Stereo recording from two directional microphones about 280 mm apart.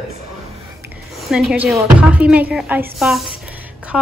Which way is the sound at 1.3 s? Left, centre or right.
Centre.